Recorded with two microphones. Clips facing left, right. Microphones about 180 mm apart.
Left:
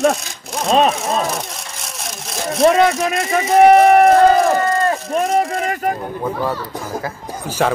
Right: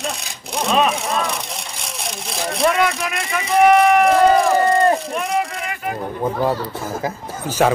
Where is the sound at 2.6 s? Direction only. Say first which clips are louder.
Left 6 dB; 30° left (ahead or behind).